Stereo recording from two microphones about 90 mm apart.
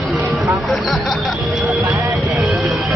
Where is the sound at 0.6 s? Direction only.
Centre (ahead or behind).